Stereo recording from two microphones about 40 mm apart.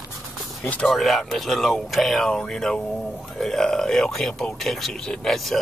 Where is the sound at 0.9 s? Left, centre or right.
Centre.